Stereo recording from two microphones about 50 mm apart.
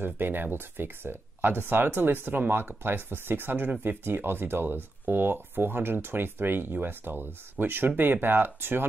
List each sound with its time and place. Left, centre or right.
0.0 s speech: right